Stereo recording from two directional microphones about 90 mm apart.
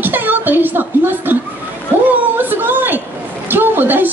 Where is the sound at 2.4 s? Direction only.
20° right (ahead or behind).